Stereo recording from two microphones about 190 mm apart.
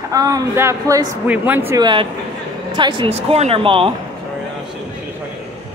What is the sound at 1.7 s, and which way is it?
A woman's voice, 25° right (ahead or behind).